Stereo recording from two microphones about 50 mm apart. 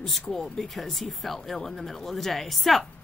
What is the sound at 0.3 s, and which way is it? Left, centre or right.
Speech, centre.